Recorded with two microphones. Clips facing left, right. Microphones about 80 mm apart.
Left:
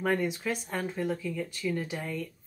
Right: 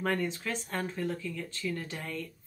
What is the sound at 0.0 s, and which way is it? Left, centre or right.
Speech, centre.